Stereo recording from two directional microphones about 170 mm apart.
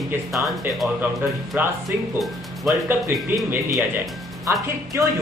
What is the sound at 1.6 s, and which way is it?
Speech, 10° right (ahead or behind).